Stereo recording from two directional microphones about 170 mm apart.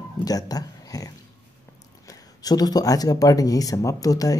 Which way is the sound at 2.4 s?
20° left (ahead or behind).